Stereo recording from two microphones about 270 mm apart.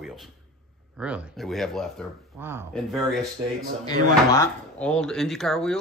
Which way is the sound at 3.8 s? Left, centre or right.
Centre.